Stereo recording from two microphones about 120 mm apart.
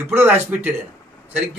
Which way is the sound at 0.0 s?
20° right (ahead or behind).